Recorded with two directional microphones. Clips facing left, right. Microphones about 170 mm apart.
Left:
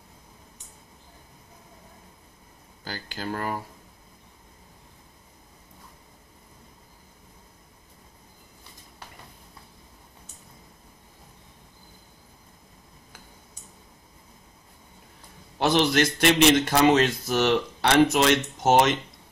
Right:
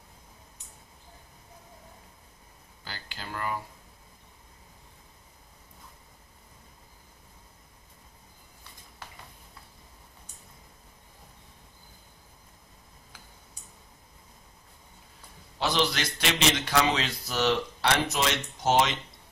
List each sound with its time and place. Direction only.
2.8 s a man's voice: 45° left (ahead or behind)
15.6 s a man's voice: 50° left (ahead or behind)